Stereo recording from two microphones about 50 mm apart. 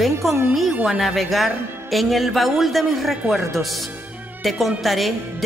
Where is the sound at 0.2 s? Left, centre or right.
Centre.